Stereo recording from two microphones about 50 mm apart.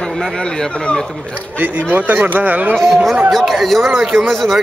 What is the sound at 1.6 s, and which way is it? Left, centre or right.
Speech, right.